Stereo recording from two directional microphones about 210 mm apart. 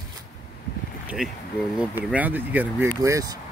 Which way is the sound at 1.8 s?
5° right (ahead or behind).